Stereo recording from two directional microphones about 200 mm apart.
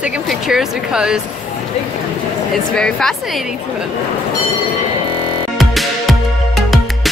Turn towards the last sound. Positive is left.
turn(degrees=0)  # may be behind; listen again after turning